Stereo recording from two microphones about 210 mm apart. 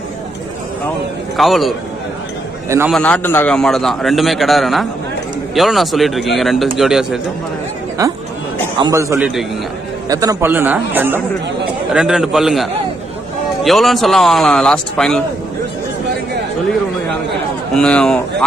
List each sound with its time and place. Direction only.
1.3 s a man's voice: centre (ahead or behind)
2.9 s a man's voice: 5° left (ahead or behind)
8.7 s a man's voice: 15° right (ahead or behind); by 12.6 s centre (ahead or behind)
13.7 s a man's voice: centre (ahead or behind)
17.7 s a man's voice: 5° left (ahead or behind)